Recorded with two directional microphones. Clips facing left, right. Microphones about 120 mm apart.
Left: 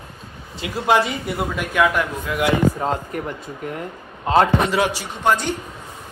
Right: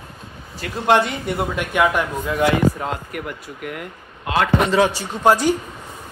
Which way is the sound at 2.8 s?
35° left (ahead or behind).